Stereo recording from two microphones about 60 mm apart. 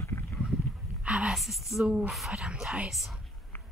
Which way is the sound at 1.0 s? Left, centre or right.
Centre.